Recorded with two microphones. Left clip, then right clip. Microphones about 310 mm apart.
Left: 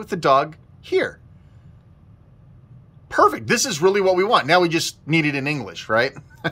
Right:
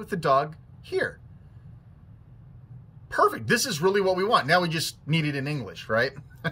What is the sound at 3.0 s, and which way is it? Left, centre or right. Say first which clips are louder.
Speech: left 6 dB; centre.